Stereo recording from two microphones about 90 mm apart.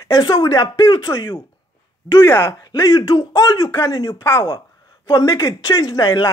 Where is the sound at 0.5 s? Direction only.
40° left (ahead or behind).